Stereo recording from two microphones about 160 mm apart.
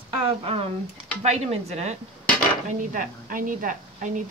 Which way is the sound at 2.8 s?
55° right (ahead or behind).